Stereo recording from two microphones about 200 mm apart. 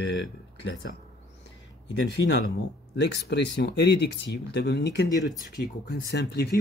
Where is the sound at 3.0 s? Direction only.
60° left (ahead or behind).